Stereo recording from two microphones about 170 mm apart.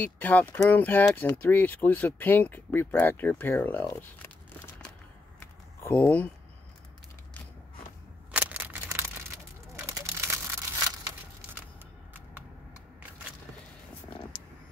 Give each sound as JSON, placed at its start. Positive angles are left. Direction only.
{"t": 0.0, "sound": "speech", "side_deg": 10}
{"t": 5.8, "sound": "speech", "side_deg": 10}
{"t": 8.3, "sound": "a sound", "side_deg": -10}